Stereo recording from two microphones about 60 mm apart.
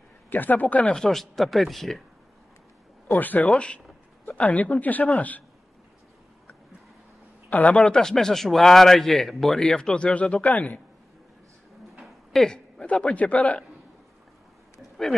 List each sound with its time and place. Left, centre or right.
0.3 s speech: left
0.9 s speech: centre
3.1 s speech: left
3.4 s speech: centre
7.4 s a man's voice: left
12.3 s a sound: centre
12.8 s speech: left